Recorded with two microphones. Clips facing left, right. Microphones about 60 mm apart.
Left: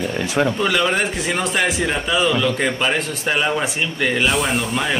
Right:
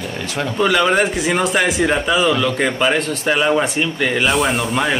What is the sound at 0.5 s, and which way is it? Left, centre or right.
Speech, centre.